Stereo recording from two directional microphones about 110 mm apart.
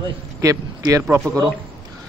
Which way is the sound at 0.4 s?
30° right (ahead or behind).